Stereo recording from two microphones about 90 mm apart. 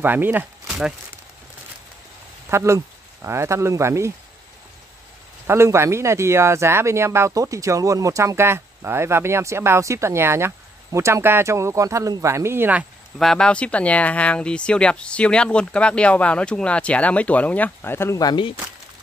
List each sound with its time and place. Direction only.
0.0 s speech: 20° right (ahead or behind)
0.7 s a sound: 5° right (ahead or behind)
2.5 s speech: 30° right (ahead or behind)
5.5 s speech: 30° right (ahead or behind)
13.2 s speech: 5° left (ahead or behind); by 18.2 s 25° left (ahead or behind)
18.2 s speech: 60° left (ahead or behind)